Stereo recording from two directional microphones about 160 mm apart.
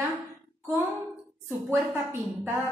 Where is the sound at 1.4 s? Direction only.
15° right (ahead or behind).